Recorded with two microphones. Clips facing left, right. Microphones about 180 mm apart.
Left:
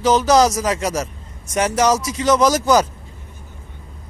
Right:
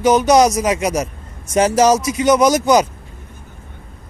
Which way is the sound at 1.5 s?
25° right (ahead or behind).